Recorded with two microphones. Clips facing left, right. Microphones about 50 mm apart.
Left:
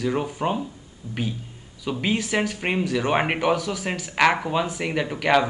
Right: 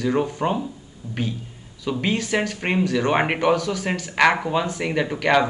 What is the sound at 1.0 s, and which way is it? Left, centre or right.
Speech, right.